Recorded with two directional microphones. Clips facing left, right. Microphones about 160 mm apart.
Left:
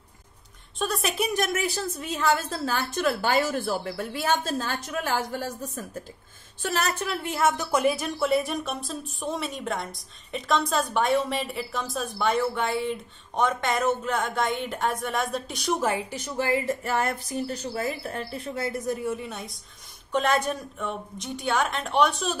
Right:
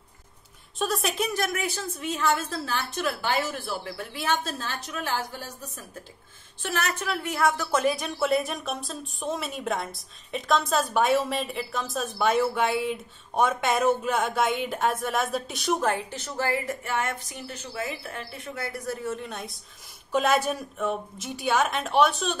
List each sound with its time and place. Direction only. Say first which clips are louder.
0.7 s a woman's voice: even; centre (ahead or behind)
1.2 s a woman's voice: left 2 dB; 20° left (ahead or behind); by 5.4 s 50° left (ahead or behind)
6.7 s a woman's voice: left 1 dB; 30° left (ahead or behind)
7.8 s a woman's voice: left 1 dB; centre (ahead or behind); by 16.7 s 20° left (ahead or behind)
16.8 s a woman's voice: left 3 dB; 35° left (ahead or behind); by 22.4 s centre (ahead or behind)